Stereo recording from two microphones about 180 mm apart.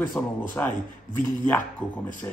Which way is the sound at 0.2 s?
10° left (ahead or behind).